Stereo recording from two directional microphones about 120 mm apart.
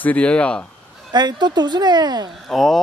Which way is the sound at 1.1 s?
35° right (ahead or behind).